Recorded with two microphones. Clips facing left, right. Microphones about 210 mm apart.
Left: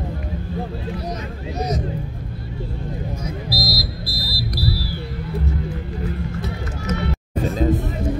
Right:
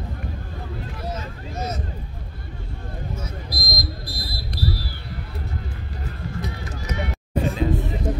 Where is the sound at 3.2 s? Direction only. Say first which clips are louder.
Left 7 dB; 10° left (ahead or behind).